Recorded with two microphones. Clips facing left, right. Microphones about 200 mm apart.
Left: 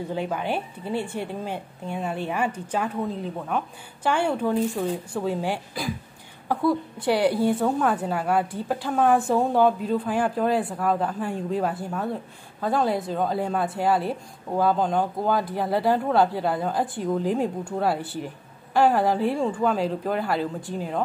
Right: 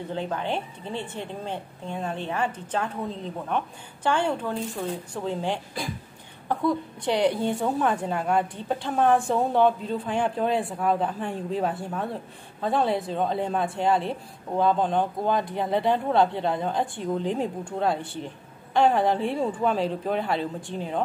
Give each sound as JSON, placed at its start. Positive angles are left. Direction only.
{"t": 0.1, "sound": "a woman's voice", "side_deg": 10}